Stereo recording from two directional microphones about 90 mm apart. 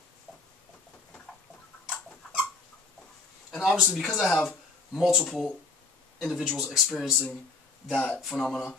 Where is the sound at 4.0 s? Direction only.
Centre (ahead or behind).